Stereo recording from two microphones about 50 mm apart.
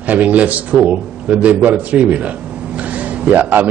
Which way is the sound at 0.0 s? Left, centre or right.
Right.